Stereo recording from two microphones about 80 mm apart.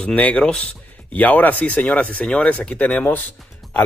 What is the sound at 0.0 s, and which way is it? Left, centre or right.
Speech, centre.